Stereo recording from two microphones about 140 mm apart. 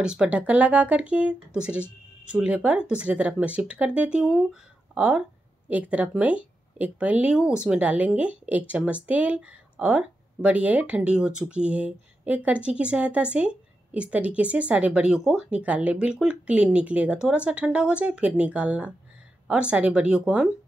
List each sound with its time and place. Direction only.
0.0 s speech: 5° right (ahead or behind)